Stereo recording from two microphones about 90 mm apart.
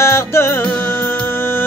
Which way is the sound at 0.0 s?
30° left (ahead or behind).